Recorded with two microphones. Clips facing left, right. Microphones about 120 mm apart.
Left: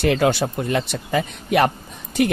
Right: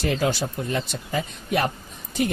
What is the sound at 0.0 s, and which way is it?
Speech, 70° left (ahead or behind).